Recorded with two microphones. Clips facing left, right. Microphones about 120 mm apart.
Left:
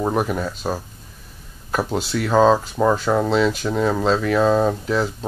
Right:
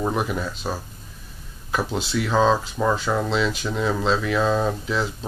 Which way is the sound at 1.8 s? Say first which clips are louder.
Left 2 dB; 40° left (ahead or behind).